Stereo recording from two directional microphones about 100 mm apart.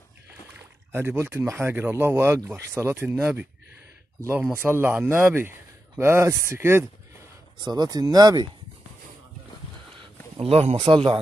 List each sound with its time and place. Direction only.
0.9 s speech: 20° right (ahead or behind)
7.6 s speech: 40° right (ahead or behind)
10.4 s speech: 90° right
10.9 s speech: 55° right (ahead or behind)